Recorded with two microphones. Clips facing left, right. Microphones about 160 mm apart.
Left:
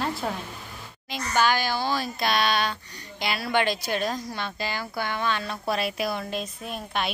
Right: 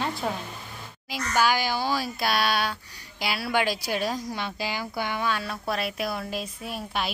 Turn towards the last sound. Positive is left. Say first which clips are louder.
# left 1 dB
turn(degrees=-5)  # may be behind; listen again after turning